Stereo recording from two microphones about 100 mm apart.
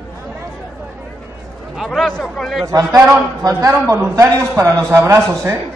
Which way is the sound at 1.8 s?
Centre (ahead or behind).